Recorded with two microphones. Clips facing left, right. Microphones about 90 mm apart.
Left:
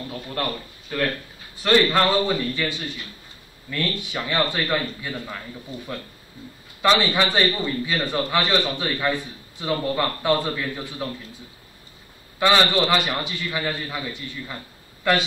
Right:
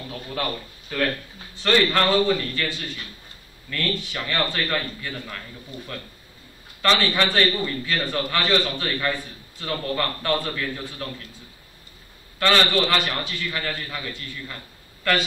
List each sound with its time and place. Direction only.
0.1 s a man's voice: centre (ahead or behind)
3.7 s a man's voice: 15° left (ahead or behind)
6.8 s a man's voice: 10° left (ahead or behind)
12.4 s a man's voice: 10° left (ahead or behind)